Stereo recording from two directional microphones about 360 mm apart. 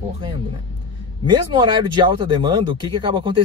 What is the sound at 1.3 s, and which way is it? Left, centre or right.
Speech, centre.